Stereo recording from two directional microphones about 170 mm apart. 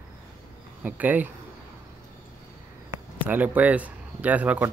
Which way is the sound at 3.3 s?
10° right (ahead or behind).